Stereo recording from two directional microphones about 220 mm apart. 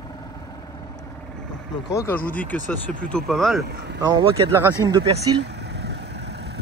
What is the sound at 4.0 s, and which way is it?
Speech, 20° right (ahead or behind).